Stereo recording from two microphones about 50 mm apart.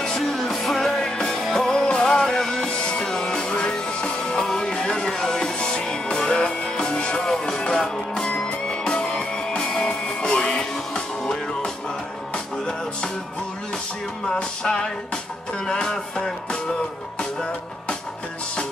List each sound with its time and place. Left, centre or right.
0.0 s music: centre
14.2 s music: centre